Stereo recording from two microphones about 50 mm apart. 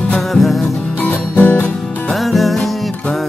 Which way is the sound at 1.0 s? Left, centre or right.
Left.